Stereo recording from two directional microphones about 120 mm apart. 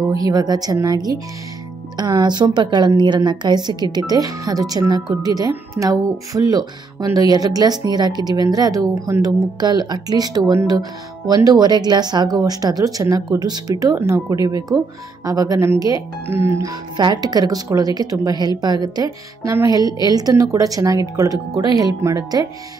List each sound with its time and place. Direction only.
0.1 s speech: 30° right (ahead or behind)
16.9 s speech: 35° right (ahead or behind)